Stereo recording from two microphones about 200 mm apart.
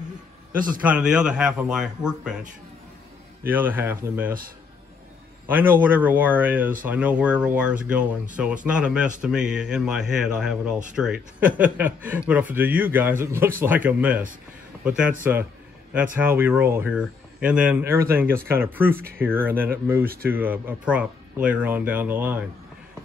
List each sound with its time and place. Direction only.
0.5 s a man's voice: 45° right (ahead or behind)
0.8 s speech: 5° right (ahead or behind)
3.4 s speech: 10° right (ahead or behind)
5.5 s speech: 10° right (ahead or behind)
20.1 s speech: 50° right (ahead or behind)
20.3 s speech: 10° right (ahead or behind)